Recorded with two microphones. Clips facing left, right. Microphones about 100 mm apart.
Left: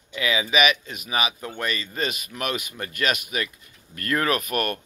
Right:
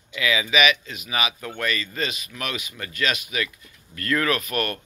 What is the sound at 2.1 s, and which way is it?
Speech, 45° left (ahead or behind).